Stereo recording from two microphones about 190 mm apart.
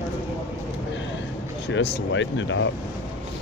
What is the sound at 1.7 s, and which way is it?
Speech, 75° left (ahead or behind).